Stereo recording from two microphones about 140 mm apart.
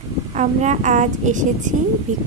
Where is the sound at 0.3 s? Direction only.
55° right (ahead or behind).